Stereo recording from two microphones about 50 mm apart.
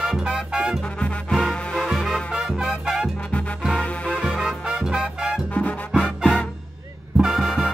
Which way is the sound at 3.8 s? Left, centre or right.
Centre.